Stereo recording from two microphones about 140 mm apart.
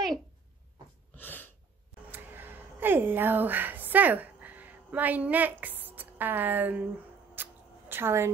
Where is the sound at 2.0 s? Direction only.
15° right (ahead or behind).